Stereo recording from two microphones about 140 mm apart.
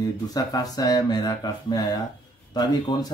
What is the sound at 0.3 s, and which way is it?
Speech, 25° left (ahead or behind).